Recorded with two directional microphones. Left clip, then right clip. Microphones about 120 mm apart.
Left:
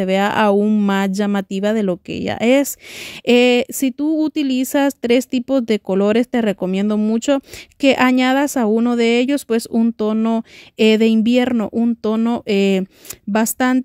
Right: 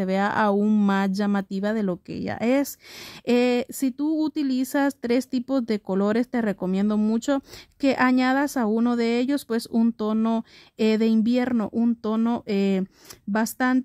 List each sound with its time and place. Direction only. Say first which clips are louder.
0.0 s speech: left 7 dB; 30° left (ahead or behind)
0.6 s speech: left 6 dB; 10° left (ahead or behind)
0.8 s speech: left 6 dB; 30° left (ahead or behind)
8.7 s speech: left 9 dB; 20° left (ahead or behind)
10.8 s speech: left 8 dB; 30° left (ahead or behind)
11.5 s speech: left 6 dB; 15° left (ahead or behind)
12.4 s speech: left 8 dB; 35° left (ahead or behind)